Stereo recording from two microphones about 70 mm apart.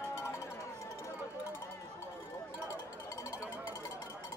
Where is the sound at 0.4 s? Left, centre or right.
Left.